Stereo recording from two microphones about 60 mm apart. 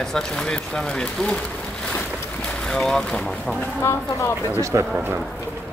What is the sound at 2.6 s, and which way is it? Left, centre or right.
Speech, centre.